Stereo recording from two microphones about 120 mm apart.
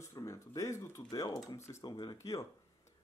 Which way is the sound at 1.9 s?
35° left (ahead or behind).